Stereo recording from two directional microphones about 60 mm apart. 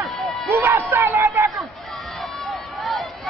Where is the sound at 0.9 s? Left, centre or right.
Right.